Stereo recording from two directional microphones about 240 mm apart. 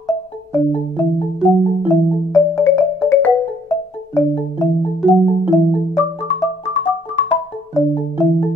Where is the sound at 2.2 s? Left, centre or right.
Centre.